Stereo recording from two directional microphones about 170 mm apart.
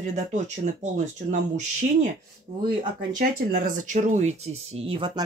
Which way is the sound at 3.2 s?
60° right (ahead or behind).